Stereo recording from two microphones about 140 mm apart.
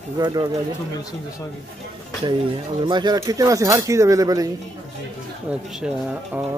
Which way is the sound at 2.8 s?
30° right (ahead or behind).